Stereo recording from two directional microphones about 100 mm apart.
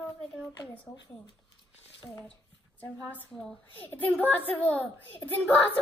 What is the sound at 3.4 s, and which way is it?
Speech, 5° left (ahead or behind).